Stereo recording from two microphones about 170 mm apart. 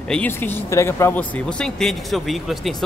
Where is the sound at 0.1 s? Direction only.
10° left (ahead or behind).